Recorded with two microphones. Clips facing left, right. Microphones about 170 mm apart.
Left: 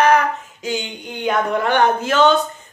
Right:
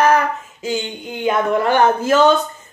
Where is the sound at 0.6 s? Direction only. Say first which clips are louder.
Right 2 dB; 5° right (ahead or behind).